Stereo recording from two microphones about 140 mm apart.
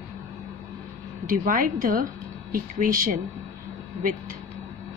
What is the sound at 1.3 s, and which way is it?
A woman's voice, 80° right.